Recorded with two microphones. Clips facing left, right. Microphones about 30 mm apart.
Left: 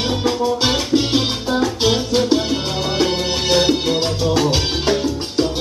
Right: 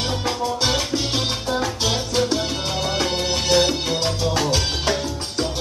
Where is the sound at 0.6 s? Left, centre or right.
Centre.